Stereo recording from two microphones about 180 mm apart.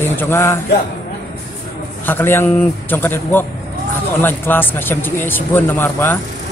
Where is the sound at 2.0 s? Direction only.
10° left (ahead or behind).